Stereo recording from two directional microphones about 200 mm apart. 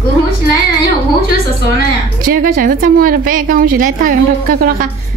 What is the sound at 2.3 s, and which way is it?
A woman's voice, 45° right (ahead or behind).